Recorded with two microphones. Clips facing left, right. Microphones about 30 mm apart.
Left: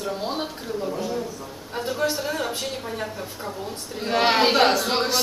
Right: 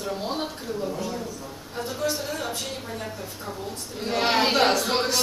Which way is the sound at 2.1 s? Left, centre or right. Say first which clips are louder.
Left 3 dB; centre.